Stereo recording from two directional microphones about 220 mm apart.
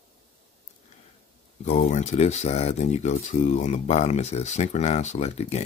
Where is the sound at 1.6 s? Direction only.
30° left (ahead or behind).